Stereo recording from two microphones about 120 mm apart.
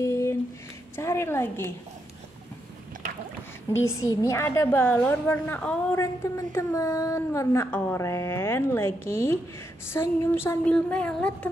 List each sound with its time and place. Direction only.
0.0 s a sound: 25° left (ahead or behind)
0.9 s a woman's voice: 20° left (ahead or behind)
3.8 s a woman's voice: 25° left (ahead or behind)
5.9 s a woman's voice: 25° left (ahead or behind)
10.6 s speech: 10° left (ahead or behind)